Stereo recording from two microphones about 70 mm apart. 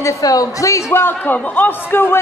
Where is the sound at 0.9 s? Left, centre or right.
Left.